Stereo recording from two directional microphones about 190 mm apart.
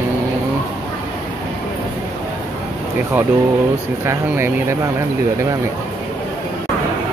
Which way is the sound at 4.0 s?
15° right (ahead or behind).